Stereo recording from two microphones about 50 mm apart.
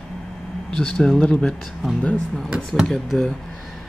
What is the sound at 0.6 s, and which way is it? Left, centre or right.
Speech, centre.